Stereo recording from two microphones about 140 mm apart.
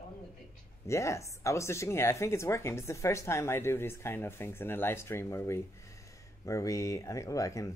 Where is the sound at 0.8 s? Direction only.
20° left (ahead or behind).